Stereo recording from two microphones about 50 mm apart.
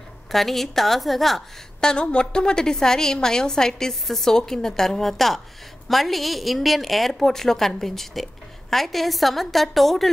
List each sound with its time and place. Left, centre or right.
0.3 s a woman's voice: centre
1.8 s a woman's voice: centre